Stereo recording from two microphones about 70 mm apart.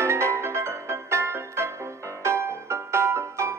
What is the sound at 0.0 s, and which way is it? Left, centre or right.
Music, right.